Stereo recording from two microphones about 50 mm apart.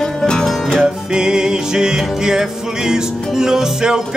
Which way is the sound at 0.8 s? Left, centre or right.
Centre.